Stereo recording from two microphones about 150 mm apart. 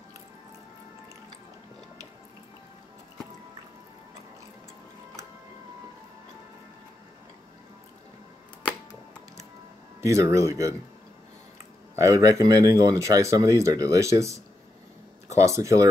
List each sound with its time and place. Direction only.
10.0 s speech: 20° right (ahead or behind)
11.9 s speech: 20° right (ahead or behind)
15.3 s speech: 20° right (ahead or behind)